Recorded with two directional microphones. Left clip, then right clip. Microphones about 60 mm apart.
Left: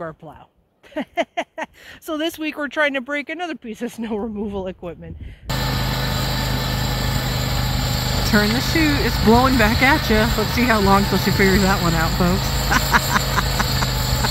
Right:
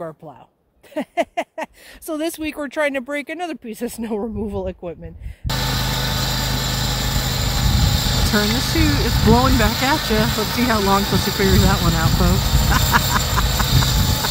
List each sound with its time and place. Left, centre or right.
0.9 s a sound: right
2.0 s speech: centre; by 3.5 s right
3.6 s speech: right
5.5 s vehicle: right